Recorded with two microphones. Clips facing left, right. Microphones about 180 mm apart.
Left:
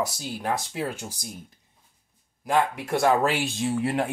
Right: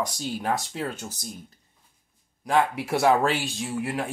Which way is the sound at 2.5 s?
5° right (ahead or behind).